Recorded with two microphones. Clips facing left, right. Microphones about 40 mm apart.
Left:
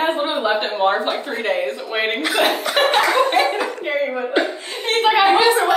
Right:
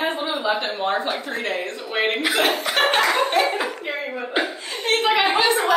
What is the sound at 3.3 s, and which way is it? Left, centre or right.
Speech, centre.